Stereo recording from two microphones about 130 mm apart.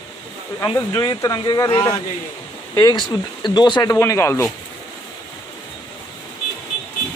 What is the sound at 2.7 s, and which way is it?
Speech, 30° left (ahead or behind).